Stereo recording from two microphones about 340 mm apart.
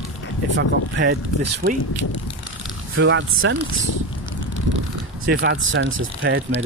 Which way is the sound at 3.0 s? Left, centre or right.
Right.